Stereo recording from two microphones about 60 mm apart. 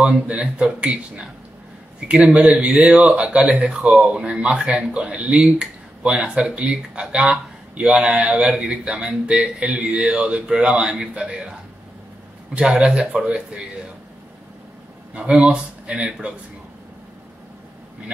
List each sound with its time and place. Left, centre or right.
0.0 s speech: centre
12.5 s speech: centre
15.1 s speech: centre